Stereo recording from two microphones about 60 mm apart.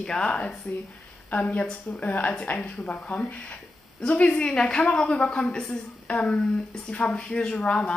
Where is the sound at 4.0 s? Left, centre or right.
Left.